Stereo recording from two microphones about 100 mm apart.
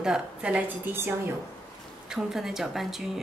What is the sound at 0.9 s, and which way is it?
Speech, 20° right (ahead or behind).